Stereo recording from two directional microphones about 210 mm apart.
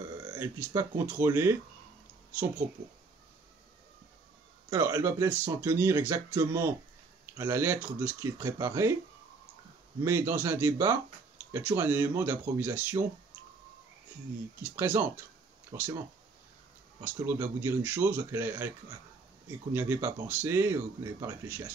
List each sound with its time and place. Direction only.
0.2 s a sound: 20° right (ahead or behind)
0.6 s speech: 10° right (ahead or behind)
4.6 s speech: 10° right (ahead or behind)
10.0 s speech: 10° right (ahead or behind)
14.6 s speech: 10° right (ahead or behind)
17.0 s speech: 10° right (ahead or behind)